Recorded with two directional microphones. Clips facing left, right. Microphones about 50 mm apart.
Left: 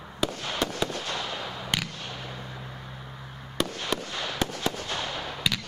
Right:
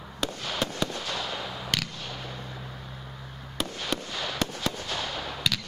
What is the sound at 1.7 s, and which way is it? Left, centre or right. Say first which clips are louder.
Fireworks: left 1 dB; centre.